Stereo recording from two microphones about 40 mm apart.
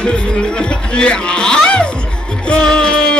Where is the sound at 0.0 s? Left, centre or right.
Left.